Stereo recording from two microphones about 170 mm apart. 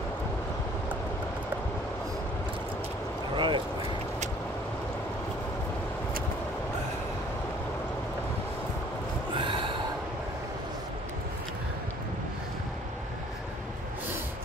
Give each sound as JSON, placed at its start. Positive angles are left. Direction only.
{"t": 3.3, "sound": "speech", "side_deg": -30}
{"t": 9.3, "sound": "snort", "side_deg": -30}